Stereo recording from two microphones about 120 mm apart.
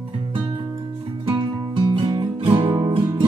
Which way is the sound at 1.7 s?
45° right (ahead or behind).